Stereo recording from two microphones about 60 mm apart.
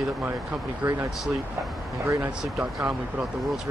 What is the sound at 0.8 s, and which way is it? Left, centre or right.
Speech, right.